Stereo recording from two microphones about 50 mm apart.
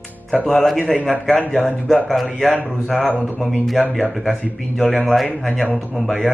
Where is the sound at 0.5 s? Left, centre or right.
Centre.